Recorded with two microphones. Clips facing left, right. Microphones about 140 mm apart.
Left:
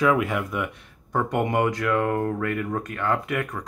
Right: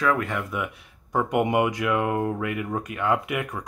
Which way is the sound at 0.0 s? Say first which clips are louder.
Left 3 dB; 10° left (ahead or behind).